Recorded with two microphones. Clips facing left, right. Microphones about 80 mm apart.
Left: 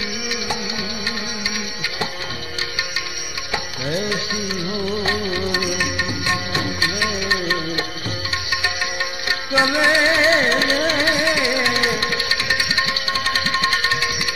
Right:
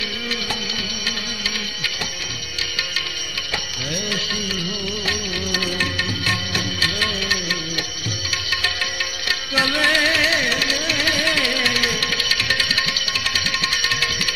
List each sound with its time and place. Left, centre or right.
4.8 s music: left
6.5 s music of bollywood: left
9.5 s music: left
11.1 s music: left
13.6 s music: left